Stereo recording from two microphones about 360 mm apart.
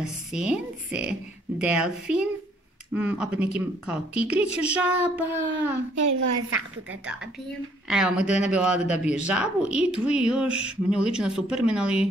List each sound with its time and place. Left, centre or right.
0.0 s a man's voice: centre
5.9 s a woman's voice: right
7.9 s a man's voice: centre